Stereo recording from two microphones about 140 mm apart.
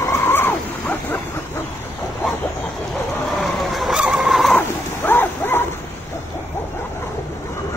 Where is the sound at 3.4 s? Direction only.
Centre (ahead or behind).